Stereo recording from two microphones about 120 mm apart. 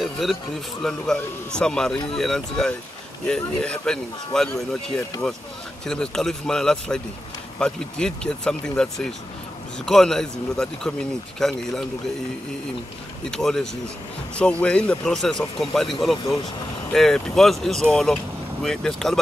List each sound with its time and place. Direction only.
0.0 s a sound: centre (ahead or behind)
0.8 s speech: 5° left (ahead or behind)
13.3 s speech: 5° left (ahead or behind)